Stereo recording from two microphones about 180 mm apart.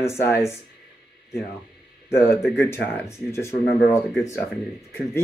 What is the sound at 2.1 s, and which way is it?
Speech, 15° left (ahead or behind).